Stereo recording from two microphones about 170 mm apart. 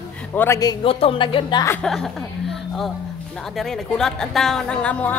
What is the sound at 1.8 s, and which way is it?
A woman's voice, centre (ahead or behind).